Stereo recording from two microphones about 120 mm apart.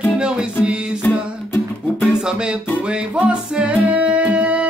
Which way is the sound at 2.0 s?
5° right (ahead or behind).